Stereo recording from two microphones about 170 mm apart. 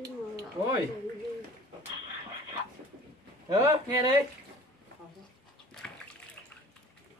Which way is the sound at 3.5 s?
20° right (ahead or behind).